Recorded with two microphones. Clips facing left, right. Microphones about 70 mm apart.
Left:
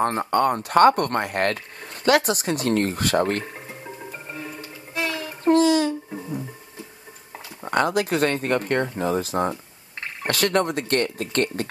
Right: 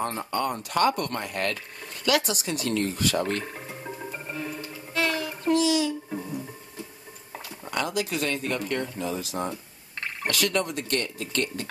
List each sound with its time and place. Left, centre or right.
0.0 s speech: left
3.5 s music: centre
4.3 s music: centre
5.4 s a sound: left
6.0 s a sound: centre
7.6 s speech: left